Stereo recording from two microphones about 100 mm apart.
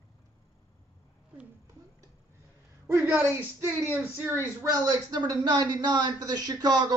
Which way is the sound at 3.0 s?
25° right (ahead or behind).